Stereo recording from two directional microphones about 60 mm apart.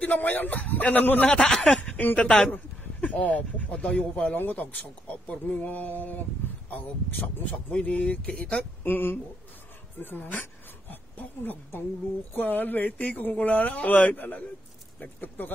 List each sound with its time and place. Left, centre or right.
0.0 s speech: left
1.3 s speech: centre
1.8 s speech: left
4.4 s speech: left
8.8 s speech: left